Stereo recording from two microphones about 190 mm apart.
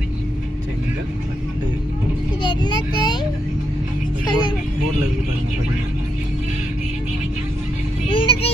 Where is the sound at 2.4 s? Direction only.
25° left (ahead or behind).